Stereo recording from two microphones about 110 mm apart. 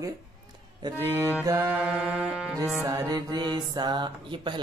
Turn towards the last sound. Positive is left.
turn(degrees=-45)  # may be behind; listen again after turning